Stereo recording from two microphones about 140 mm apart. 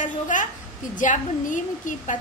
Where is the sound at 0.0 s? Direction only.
65° left (ahead or behind).